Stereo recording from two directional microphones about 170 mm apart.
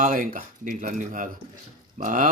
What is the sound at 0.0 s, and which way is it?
Speech, 50° right (ahead or behind).